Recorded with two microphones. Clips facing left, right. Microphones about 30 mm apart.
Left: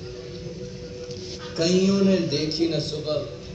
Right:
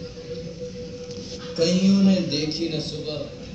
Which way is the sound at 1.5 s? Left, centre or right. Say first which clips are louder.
Even; left.